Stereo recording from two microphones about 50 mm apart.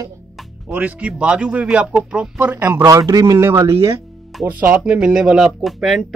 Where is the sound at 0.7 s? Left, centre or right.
Right.